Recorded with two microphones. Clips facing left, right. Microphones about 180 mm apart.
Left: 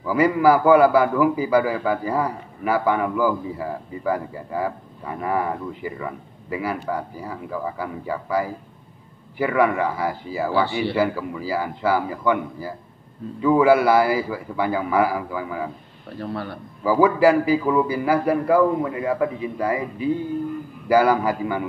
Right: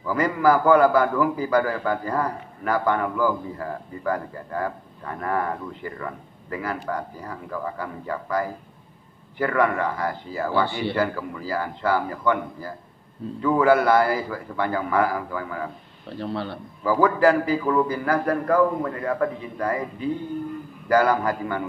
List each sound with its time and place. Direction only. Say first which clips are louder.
0.0 s a man's voice: left 3 dB; 10° left (ahead or behind)
16.2 s a man's voice: even; 25° right (ahead or behind)
16.8 s a man's voice: left 2 dB; 10° left (ahead or behind)